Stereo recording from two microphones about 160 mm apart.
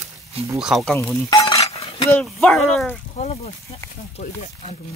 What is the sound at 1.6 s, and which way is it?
Chink, 35° left (ahead or behind).